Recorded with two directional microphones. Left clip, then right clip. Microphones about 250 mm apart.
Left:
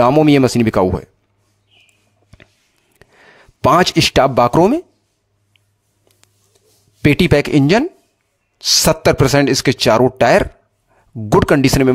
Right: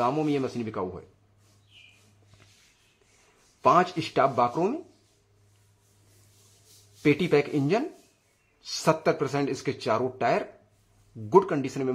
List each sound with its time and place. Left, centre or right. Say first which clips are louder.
0.0 s speech: left 15 dB; left
3.6 s speech: left 10 dB; left
7.0 s speech: left 10 dB; left
8.8 s speech: left 7 dB; left